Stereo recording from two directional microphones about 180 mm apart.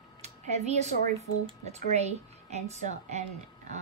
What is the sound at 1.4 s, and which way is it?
Speech, 35° right (ahead or behind).